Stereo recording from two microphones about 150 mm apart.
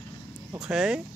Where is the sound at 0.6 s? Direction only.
5° right (ahead or behind).